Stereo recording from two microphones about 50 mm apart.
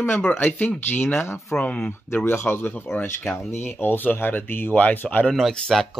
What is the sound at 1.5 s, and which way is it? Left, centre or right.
Speech, left.